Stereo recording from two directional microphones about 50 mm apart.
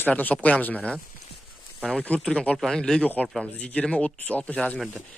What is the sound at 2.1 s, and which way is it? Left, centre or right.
Speech, left.